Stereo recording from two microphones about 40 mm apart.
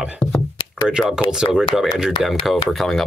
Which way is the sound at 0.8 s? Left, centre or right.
Centre.